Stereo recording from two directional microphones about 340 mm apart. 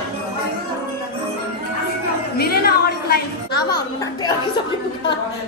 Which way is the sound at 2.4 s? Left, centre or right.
Left.